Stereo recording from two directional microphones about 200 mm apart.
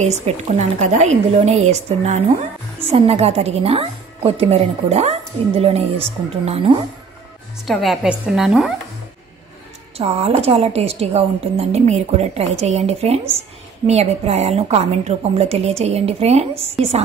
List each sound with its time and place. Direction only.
0.0 s a woman's voice: 35° right (ahead or behind)
7.6 s a woman's voice: centre (ahead or behind)
9.9 s a woman's voice: 30° right (ahead or behind)